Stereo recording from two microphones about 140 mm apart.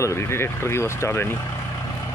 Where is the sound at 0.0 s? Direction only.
20° left (ahead or behind).